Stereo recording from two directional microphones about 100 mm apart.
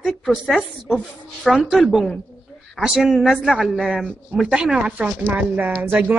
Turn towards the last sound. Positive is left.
turn(degrees=-15)  # may be behind; listen again after turning